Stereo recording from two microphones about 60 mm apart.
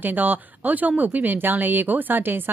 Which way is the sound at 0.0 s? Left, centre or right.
Right.